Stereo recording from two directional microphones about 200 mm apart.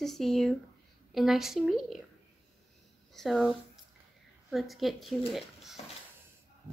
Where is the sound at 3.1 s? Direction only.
Centre (ahead or behind).